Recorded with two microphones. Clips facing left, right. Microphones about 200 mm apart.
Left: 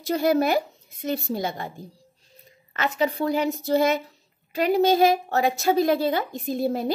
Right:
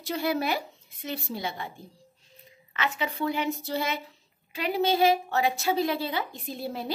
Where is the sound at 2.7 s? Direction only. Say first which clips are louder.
Left 6 dB; 40° left (ahead or behind).